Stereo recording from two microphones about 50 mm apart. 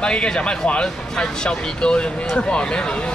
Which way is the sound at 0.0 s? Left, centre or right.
Centre.